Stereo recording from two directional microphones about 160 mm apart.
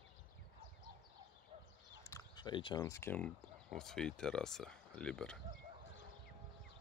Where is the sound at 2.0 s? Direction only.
20° left (ahead or behind).